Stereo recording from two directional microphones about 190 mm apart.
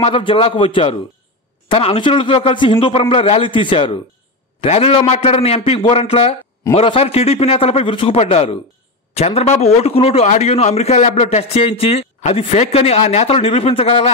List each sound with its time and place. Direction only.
0.0 s a man's voice: 30° left (ahead or behind)